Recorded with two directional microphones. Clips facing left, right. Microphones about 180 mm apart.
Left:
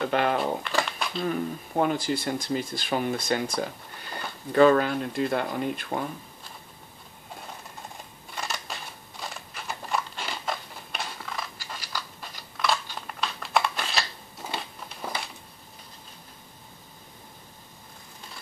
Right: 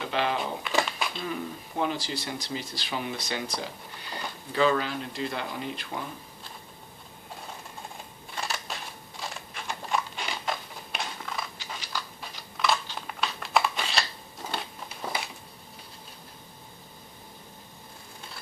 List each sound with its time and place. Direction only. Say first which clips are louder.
0.0 s speech: left 4 dB; 50° left (ahead or behind)
0.6 s speech: even; 5° right (ahead or behind)
1.2 s speech: left 5 dB; 50° left (ahead or behind)
8.4 s a sound: even; centre (ahead or behind)